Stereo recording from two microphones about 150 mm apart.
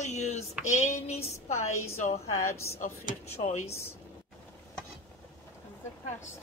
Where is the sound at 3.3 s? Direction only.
45° left (ahead or behind).